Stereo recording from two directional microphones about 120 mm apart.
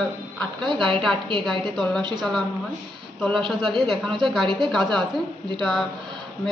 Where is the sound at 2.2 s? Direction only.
5° left (ahead or behind).